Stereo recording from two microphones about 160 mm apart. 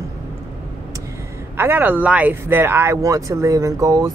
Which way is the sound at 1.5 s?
15° right (ahead or behind).